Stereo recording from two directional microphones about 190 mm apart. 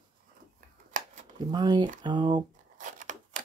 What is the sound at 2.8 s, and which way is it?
Scissors, 40° right (ahead or behind).